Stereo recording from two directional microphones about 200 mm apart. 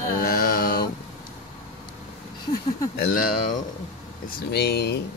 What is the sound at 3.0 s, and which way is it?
Speech, 45° left (ahead or behind).